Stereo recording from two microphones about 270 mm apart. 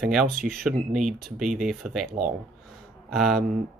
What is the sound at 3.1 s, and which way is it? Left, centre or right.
Speech, centre.